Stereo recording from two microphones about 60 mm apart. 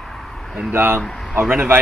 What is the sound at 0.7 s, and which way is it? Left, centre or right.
Speech, right.